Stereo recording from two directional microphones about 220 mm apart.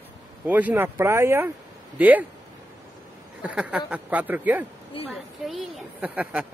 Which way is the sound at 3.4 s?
5° right (ahead or behind).